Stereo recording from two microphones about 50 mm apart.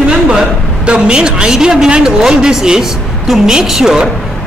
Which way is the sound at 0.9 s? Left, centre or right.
Centre.